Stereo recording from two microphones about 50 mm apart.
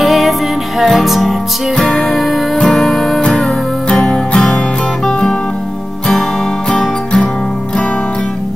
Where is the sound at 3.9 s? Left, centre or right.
Centre.